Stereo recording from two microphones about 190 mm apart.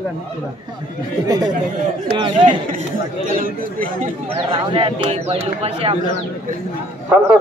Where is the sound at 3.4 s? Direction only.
50° right (ahead or behind).